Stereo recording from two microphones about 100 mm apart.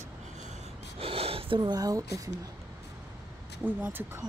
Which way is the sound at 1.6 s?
40° right (ahead or behind).